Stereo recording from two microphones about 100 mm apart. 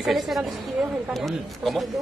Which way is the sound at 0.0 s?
Centre (ahead or behind).